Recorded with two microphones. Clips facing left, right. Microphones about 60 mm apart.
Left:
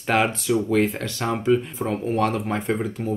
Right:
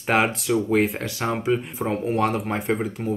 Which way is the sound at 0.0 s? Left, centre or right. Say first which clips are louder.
Even; centre.